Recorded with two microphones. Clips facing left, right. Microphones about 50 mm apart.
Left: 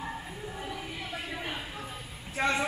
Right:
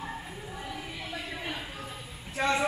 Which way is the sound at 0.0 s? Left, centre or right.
Centre.